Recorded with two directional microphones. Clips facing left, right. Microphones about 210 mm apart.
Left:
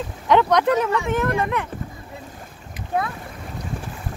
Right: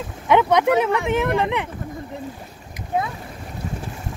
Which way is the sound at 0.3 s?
10° right (ahead or behind).